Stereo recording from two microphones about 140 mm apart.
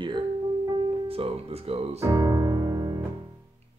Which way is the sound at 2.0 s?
25° right (ahead or behind).